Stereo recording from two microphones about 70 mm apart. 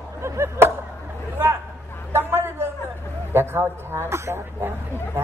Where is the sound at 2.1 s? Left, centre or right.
Right.